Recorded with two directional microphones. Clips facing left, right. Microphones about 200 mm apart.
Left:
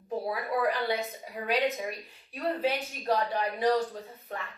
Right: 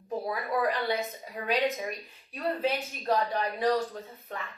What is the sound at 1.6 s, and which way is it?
Speech, centre (ahead or behind).